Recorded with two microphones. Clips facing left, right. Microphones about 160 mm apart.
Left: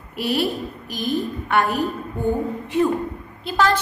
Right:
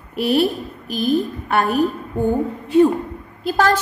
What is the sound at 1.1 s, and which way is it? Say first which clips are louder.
Speech: right 1 dB; 35° right (ahead or behind).